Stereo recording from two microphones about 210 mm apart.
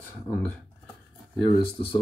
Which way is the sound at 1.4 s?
25° left (ahead or behind).